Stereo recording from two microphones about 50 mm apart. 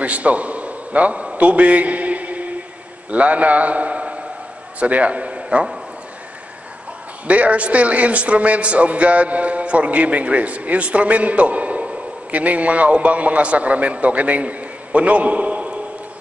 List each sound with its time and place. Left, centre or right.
0.0 s a sound: right
3.1 s a man's voice: right
7.2 s a man's voice: right